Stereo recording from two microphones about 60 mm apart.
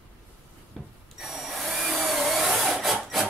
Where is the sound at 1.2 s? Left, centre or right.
Centre.